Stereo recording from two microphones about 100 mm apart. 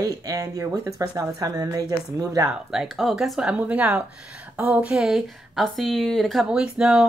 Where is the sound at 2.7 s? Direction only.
Centre (ahead or behind).